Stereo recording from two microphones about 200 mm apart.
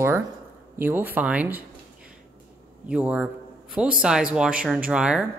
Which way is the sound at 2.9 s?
5° right (ahead or behind).